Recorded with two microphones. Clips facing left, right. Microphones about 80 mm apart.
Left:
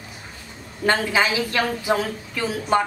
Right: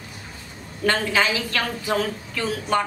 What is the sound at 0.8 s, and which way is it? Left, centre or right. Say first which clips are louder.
A woman's voice: left 1 dB; centre.